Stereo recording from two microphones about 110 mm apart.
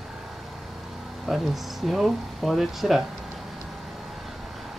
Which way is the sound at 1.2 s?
Centre (ahead or behind).